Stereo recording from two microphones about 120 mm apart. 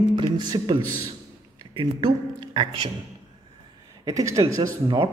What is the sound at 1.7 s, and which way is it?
Speech, 40° right (ahead or behind).